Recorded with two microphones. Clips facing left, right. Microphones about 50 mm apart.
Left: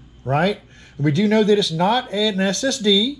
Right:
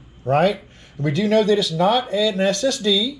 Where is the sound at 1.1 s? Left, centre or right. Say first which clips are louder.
Left 1 dB; centre.